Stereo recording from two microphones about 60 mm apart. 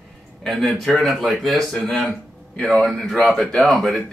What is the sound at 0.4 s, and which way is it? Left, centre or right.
Speech, centre.